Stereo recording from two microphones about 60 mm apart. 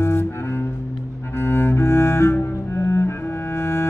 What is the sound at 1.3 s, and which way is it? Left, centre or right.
Cello, left.